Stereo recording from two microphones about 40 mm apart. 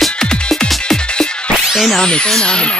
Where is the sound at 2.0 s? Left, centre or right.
Centre.